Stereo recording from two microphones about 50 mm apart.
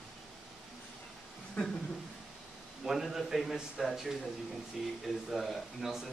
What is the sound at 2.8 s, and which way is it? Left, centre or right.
Speech, centre.